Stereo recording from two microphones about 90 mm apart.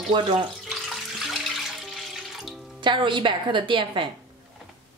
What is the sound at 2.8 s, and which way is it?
A woman's voice, 60° right (ahead or behind).